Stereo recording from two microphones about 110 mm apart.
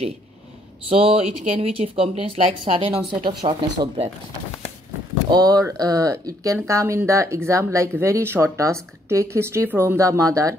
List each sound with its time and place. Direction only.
0.8 s speech: 55° right (ahead or behind)
5.3 s speech: 35° right (ahead or behind)